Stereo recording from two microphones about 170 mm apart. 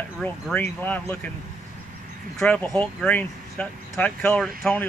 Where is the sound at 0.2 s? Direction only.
10° left (ahead or behind).